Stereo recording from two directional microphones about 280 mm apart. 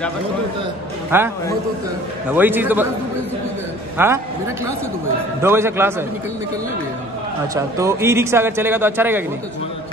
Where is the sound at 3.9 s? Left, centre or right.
Centre.